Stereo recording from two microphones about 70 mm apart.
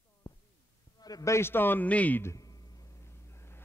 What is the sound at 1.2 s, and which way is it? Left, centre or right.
A man's voice, left.